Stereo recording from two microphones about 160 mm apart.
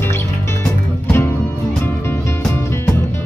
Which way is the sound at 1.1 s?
15° left (ahead or behind).